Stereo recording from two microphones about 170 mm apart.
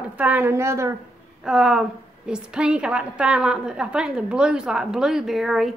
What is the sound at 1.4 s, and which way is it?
A woman's voice, 5° right (ahead or behind).